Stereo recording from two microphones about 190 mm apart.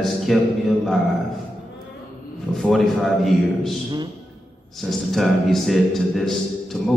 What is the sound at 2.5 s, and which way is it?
A man's voice, centre (ahead or behind).